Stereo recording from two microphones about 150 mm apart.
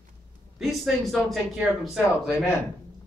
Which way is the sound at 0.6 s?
Centre (ahead or behind).